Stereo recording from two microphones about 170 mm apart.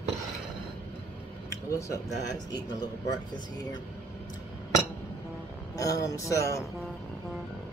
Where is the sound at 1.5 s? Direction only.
15° left (ahead or behind).